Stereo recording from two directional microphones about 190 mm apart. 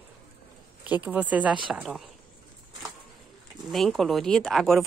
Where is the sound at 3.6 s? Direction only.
Centre (ahead or behind).